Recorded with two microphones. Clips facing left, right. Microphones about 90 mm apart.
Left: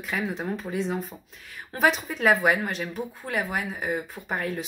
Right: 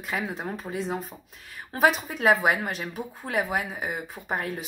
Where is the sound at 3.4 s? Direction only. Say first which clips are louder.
Right 2 dB; 15° right (ahead or behind).